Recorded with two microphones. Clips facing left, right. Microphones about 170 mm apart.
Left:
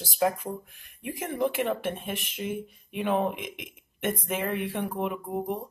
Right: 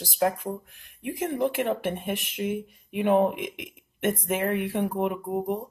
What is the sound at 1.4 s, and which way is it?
Speech, 15° right (ahead or behind).